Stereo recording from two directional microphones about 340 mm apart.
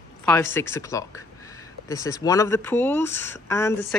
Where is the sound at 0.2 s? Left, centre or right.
Centre.